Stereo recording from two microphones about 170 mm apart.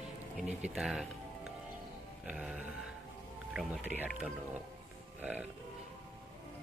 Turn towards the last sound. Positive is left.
turn(degrees=-10)  # may be behind; listen again after turning